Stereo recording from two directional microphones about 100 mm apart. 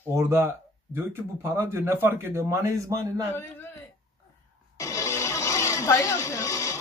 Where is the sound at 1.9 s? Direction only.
25° right (ahead or behind).